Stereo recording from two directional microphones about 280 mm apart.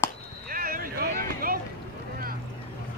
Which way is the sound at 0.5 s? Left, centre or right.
Right.